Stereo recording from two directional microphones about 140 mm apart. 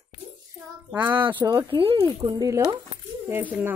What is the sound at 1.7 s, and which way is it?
Speech, 40° right (ahead or behind).